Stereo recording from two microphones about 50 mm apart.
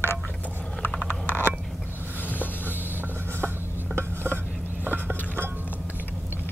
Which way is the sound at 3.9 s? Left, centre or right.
Right.